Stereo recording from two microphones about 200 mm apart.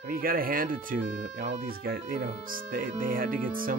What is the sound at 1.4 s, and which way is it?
Speech, 55° right (ahead or behind).